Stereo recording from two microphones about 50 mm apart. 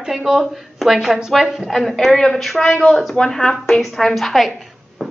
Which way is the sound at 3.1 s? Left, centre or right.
Centre.